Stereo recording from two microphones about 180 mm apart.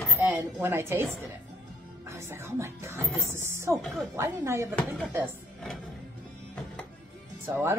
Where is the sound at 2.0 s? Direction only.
15° right (ahead or behind).